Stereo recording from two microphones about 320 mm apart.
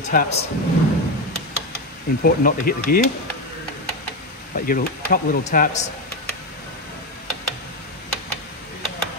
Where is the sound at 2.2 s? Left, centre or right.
Left.